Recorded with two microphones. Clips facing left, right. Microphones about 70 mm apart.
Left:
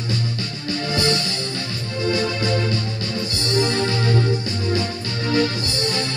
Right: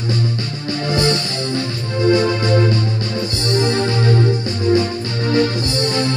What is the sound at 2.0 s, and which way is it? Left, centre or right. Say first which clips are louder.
Music: right 7 dB; right.